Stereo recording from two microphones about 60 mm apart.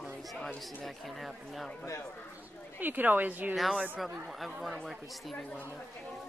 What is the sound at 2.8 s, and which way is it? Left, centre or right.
Speech, right.